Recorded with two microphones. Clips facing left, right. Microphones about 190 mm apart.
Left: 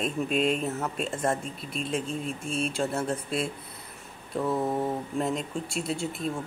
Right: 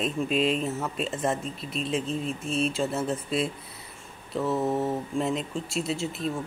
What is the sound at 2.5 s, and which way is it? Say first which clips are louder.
Speech: right 2 dB; centre (ahead or behind).